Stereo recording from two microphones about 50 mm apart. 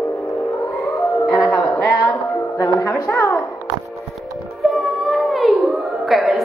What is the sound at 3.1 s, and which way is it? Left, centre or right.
Speech, left.